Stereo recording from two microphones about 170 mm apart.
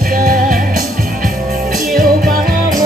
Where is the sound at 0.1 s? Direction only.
55° right (ahead or behind).